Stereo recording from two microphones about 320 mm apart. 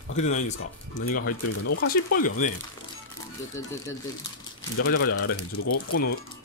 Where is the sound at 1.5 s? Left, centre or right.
Left.